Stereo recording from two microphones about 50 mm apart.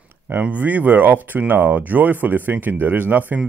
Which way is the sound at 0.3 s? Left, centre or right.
Right.